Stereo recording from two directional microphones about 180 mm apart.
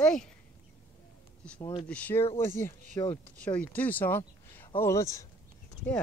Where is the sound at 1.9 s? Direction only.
10° left (ahead or behind).